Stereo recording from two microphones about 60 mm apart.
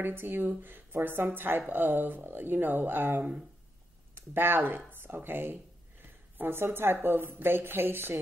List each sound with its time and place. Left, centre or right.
0.0 s a woman's voice: right